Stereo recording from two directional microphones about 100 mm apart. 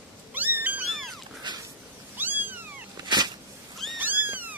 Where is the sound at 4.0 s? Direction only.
20° right (ahead or behind).